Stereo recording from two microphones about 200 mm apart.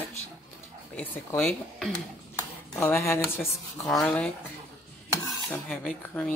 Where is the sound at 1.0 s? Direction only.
5° left (ahead or behind).